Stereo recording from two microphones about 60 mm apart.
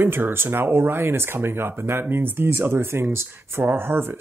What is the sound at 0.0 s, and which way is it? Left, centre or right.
Speech, right.